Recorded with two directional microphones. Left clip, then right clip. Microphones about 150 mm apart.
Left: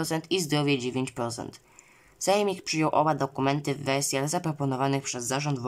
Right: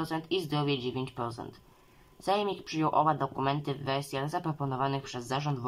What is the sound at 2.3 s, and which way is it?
Speech, 15° left (ahead or behind).